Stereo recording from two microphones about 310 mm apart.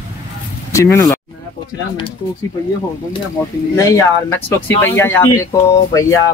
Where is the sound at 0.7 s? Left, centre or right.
Centre.